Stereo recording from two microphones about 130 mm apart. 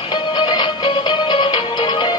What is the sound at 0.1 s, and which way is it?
Music, 35° left (ahead or behind).